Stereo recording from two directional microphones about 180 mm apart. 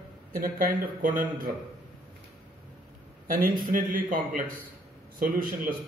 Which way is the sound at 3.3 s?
50° right (ahead or behind).